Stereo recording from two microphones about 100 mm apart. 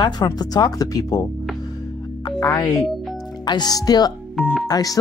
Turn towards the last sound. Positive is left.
turn(degrees=40)  # may be behind; listen again after turning